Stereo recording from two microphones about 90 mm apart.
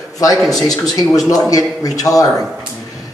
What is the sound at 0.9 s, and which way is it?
A man's voice, 40° left (ahead or behind).